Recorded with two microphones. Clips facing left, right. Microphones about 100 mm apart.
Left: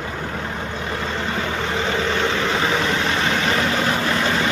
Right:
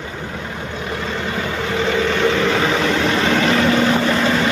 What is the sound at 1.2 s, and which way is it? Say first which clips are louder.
Vehicle: right 1 dB; 20° right (ahead or behind).